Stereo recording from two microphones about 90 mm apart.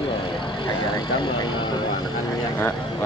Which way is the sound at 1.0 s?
60° left (ahead or behind).